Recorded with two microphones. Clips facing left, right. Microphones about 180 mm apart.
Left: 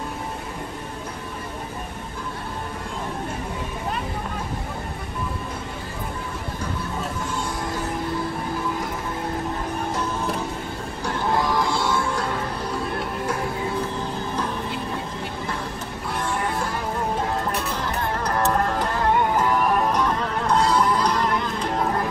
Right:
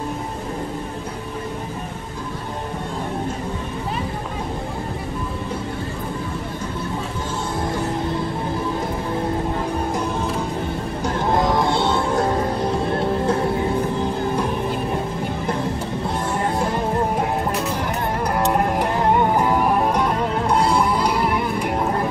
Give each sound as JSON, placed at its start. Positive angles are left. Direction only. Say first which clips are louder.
{"t": 11.1, "sound": "music", "louder": "right 3 dB", "side_deg": -20}
{"t": 11.7, "sound": "music", "louder": "right 4 dB", "side_deg": -65}
{"t": 12.1, "sound": "music", "louder": "right 6 dB", "side_deg": -40}
{"t": 12.7, "sound": "music", "louder": "right 7 dB", "side_deg": -25}
{"t": 17.2, "sound": "music", "louder": "right 3 dB", "side_deg": -15}